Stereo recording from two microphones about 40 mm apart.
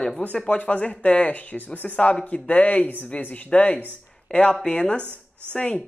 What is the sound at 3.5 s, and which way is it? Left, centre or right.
Speech, left.